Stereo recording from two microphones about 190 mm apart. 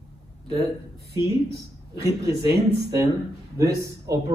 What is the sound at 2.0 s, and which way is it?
Speech, 15° right (ahead or behind).